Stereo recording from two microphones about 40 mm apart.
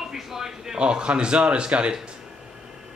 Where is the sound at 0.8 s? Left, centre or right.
Right.